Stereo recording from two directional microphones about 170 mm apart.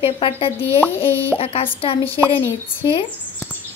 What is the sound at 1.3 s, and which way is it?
Speech, 35° left (ahead or behind).